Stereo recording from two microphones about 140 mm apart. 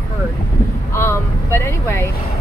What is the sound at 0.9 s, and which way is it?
Speech, 15° left (ahead or behind).